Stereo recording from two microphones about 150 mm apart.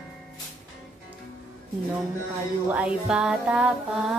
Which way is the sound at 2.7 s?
10° right (ahead or behind).